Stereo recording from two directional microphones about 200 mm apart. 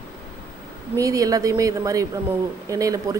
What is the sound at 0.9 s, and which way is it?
Speech, 15° right (ahead or behind).